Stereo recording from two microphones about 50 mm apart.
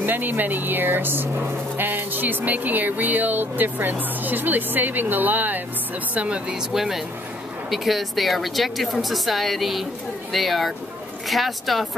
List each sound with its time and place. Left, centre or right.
0.0 s speech: right
6.1 s speech: right
6.7 s a woman's voice: centre